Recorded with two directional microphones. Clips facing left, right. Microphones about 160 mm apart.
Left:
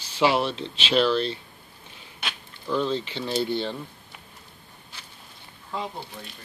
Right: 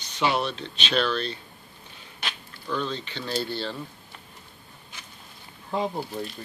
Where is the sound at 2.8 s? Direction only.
25° left (ahead or behind).